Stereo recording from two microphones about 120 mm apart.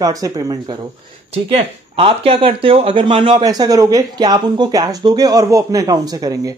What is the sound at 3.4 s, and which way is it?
Speech, 30° right (ahead or behind).